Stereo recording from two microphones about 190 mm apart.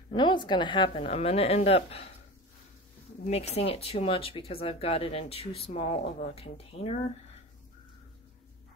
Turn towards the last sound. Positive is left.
turn(degrees=30)  # may be behind; listen again after turning